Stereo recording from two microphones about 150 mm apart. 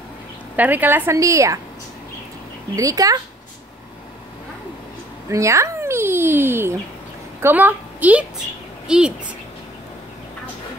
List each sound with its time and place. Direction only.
0.6 s speech: 10° right (ahead or behind)
2.7 s speech: 20° right (ahead or behind)
5.3 s a woman's voice: 20° right (ahead or behind)